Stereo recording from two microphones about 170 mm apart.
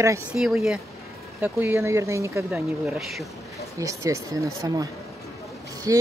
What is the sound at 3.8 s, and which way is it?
Speech, 20° right (ahead or behind).